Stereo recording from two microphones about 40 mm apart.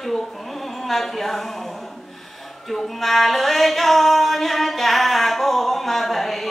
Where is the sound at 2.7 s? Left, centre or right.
Centre.